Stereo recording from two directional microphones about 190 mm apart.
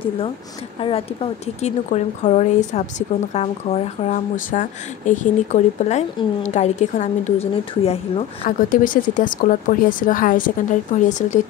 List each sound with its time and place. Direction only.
0.7 s speech: 30° left (ahead or behind)
8.5 s speech: 45° left (ahead or behind)